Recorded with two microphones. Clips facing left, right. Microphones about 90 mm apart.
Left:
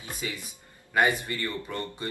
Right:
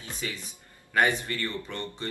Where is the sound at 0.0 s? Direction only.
15° left (ahead or behind).